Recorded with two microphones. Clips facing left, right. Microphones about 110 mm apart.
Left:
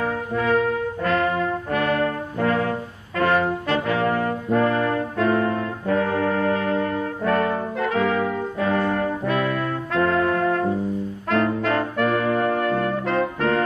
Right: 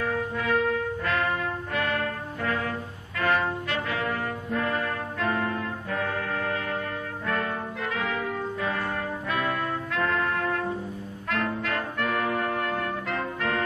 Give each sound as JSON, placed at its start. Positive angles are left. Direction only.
{"t": 0.0, "sound": "music", "side_deg": 30}
{"t": 1.0, "sound": "brass instrument", "side_deg": 35}
{"t": 3.2, "sound": "brass instrument", "side_deg": 35}
{"t": 4.0, "sound": "brass instrument", "side_deg": 50}
{"t": 4.6, "sound": "brass instrument", "side_deg": 35}
{"t": 9.9, "sound": "trumpet", "side_deg": 35}
{"t": 11.2, "sound": "brass instrument", "side_deg": 35}